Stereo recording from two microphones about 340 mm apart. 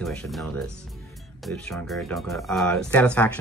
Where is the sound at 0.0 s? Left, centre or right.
Centre.